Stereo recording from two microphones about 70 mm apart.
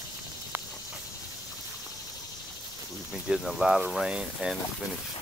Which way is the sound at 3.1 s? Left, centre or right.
Centre.